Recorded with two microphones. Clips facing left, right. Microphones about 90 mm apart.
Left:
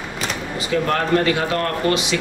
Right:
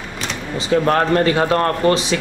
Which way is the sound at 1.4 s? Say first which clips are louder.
Right 5 dB; 35° right (ahead or behind).